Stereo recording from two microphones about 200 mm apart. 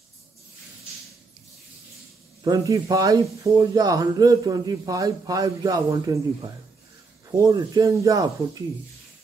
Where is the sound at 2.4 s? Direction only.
20° right (ahead or behind).